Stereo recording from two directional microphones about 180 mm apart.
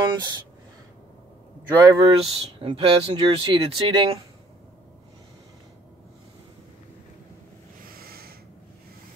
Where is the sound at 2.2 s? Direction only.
35° right (ahead or behind).